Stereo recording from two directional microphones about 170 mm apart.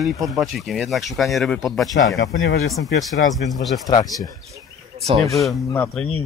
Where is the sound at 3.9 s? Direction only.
20° left (ahead or behind).